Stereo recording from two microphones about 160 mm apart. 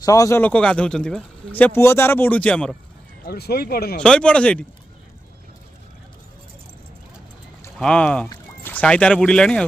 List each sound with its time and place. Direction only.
0.0 s speech: 20° left (ahead or behind)
3.3 s speech: 75° left (ahead or behind)
4.0 s speech: 5° left (ahead or behind)
7.8 s speech: 5° left (ahead or behind)